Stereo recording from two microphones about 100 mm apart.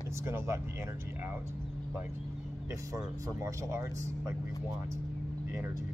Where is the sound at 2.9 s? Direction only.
35° right (ahead or behind).